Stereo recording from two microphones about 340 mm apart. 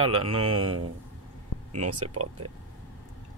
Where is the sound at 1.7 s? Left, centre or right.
Right.